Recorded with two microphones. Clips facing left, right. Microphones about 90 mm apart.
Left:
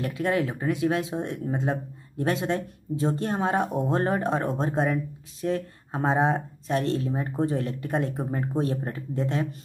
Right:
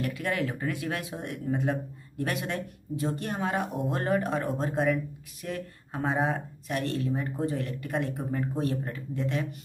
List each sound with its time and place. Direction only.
0.0 s speech: 25° left (ahead or behind)